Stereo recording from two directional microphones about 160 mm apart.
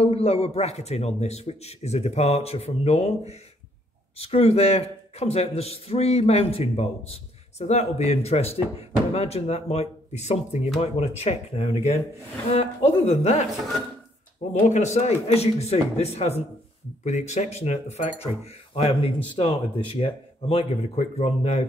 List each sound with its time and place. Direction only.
0.0 s speech: 35° left (ahead or behind)
14.5 s speech: 45° left (ahead or behind)